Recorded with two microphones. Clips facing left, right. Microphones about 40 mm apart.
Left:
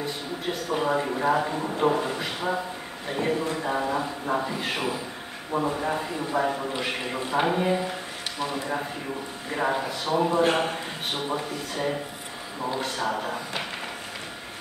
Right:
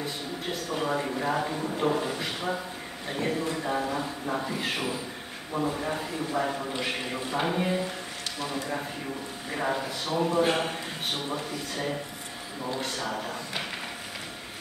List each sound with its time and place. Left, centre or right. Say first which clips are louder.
0.0 s a man's voice: left 3 dB; centre